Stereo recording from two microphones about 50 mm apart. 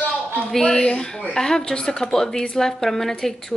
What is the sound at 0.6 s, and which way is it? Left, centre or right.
A woman's voice, centre.